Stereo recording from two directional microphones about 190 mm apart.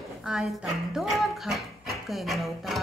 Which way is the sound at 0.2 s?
Centre (ahead or behind).